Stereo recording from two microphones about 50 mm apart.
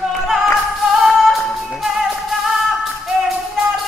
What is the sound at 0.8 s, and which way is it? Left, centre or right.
Music, centre.